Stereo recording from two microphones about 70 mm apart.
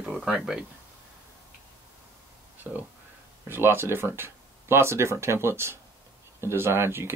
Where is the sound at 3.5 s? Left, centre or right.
Right.